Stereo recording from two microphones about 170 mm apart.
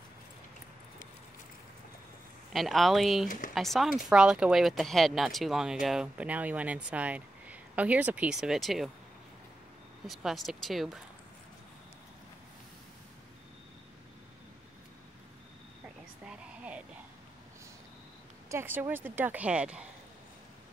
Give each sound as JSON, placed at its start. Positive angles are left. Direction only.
{"t": 2.5, "sound": "speech", "side_deg": 0}
{"t": 3.3, "sound": "speech", "side_deg": 50}
{"t": 3.5, "sound": "speech", "side_deg": 0}
{"t": 10.0, "sound": "speech", "side_deg": 0}
{"t": 16.3, "sound": "a sound", "side_deg": -5}
{"t": 18.5, "sound": "a woman's voice", "side_deg": -15}